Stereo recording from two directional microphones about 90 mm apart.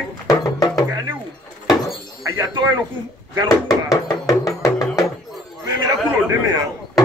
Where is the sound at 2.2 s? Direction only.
50° right (ahead or behind).